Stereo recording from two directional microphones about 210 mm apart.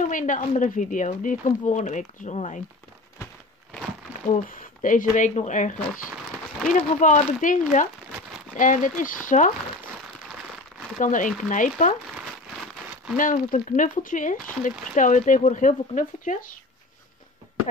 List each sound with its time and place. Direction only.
0.0 s speech: 40° left (ahead or behind)
4.3 s speech: 40° left (ahead or behind)
11.0 s speech: 35° left (ahead or behind)
13.1 s speech: 40° left (ahead or behind)